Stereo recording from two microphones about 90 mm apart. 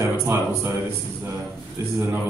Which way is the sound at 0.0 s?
30° right (ahead or behind).